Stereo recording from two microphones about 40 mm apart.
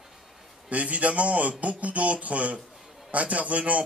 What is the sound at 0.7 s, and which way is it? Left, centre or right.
Speech, right.